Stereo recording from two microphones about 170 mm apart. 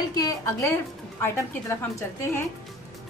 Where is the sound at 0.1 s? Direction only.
20° left (ahead or behind).